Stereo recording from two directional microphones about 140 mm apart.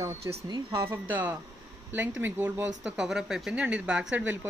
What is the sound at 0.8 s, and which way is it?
Speech, 15° right (ahead or behind).